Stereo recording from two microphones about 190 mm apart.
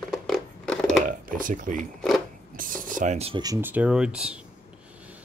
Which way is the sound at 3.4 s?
15° right (ahead or behind).